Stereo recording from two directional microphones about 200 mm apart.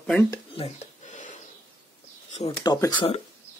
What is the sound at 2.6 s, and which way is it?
Speech, 20° left (ahead or behind).